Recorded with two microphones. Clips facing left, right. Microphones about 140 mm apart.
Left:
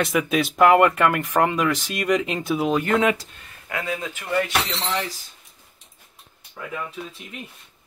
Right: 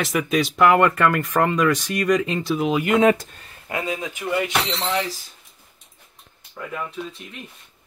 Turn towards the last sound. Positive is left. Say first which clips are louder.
# right 2 dB
turn(degrees=5)  # may be behind; listen again after turning